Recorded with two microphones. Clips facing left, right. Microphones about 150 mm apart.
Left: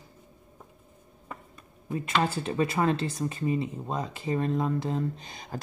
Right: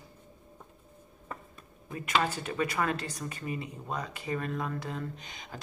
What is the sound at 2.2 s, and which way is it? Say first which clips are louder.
Speech: left 4 dB; 30° left (ahead or behind).